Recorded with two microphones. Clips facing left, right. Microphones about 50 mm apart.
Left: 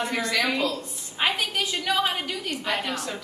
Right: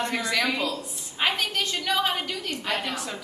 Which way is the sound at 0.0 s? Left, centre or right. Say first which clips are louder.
Even; centre.